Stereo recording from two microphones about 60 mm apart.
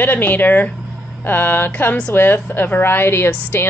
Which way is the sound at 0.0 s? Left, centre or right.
Left.